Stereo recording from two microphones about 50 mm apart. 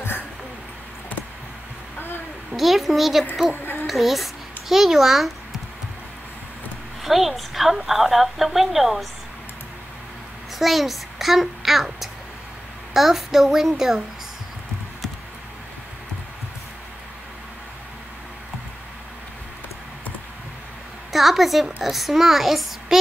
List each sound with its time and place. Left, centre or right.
2.0 s a sound: left
2.5 s a woman's voice: centre
7.0 s a woman's voice: centre
10.6 s a child's voice: centre
21.1 s a woman's voice: centre